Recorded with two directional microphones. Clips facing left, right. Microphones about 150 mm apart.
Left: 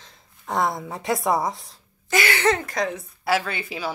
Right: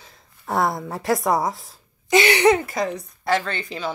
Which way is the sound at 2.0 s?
20° right (ahead or behind).